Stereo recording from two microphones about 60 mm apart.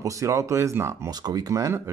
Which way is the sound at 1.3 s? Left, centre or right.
Right.